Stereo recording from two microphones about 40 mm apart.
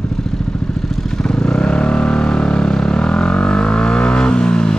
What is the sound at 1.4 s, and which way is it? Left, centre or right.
Vehicle, left.